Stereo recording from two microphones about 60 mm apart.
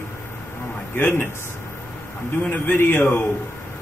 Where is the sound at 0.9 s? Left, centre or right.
Left.